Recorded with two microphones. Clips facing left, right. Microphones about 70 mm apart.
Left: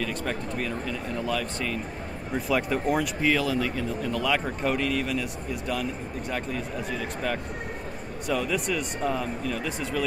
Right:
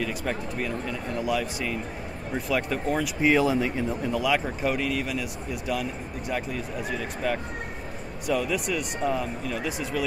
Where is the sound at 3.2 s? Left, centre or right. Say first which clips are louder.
Right 3 dB; right.